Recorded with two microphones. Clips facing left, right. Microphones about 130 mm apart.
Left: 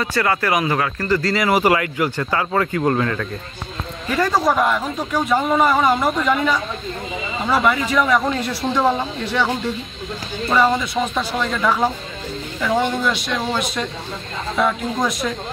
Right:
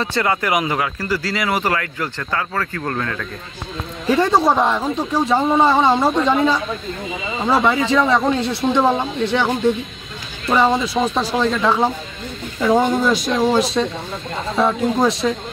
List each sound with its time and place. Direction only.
0.0 s speech: 20° right (ahead or behind); by 3.0 s 15° left (ahead or behind)
3.0 s speech: 5° left (ahead or behind)
4.1 s speech: 25° right (ahead or behind)
10.5 s speech: 15° right (ahead or behind)
10.8 s speech: 30° right (ahead or behind)
12.6 s speech: 40° right (ahead or behind)
13.8 s speech: 10° right (ahead or behind)
14.6 s speech: 30° right (ahead or behind)